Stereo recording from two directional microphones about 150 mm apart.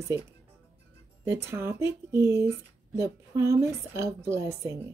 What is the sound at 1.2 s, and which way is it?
A woman's voice, 15° right (ahead or behind).